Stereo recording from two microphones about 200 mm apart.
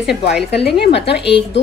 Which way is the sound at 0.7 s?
55° left (ahead or behind).